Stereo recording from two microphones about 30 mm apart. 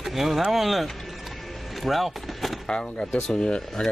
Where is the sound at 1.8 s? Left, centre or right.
Centre.